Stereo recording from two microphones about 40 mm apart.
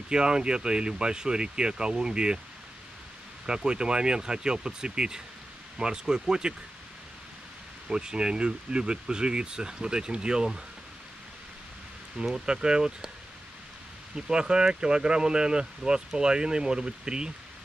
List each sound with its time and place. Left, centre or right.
0.1 s speech: right
3.4 s speech: centre
7.9 s speech: centre
12.4 s speech: centre
14.1 s speech: centre